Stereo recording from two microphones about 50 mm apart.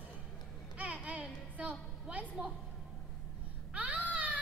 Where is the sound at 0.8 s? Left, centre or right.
Right.